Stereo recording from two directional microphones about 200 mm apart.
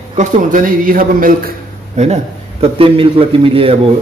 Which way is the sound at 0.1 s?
40° right (ahead or behind).